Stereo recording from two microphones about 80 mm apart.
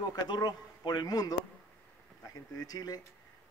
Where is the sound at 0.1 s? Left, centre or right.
Left.